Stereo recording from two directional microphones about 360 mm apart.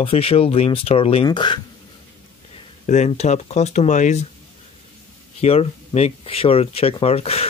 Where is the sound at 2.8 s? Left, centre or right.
Centre.